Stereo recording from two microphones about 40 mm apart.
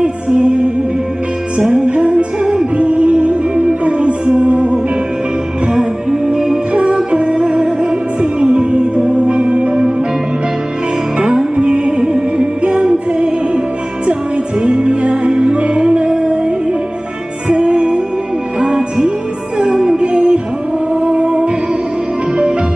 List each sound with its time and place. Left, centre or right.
0.0 s music: right
1.9 s music: right
5.7 s music: centre
6.7 s music: right
11.1 s music: right
14.6 s music: right